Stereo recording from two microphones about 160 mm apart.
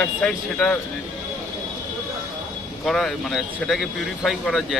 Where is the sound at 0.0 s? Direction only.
5° left (ahead or behind).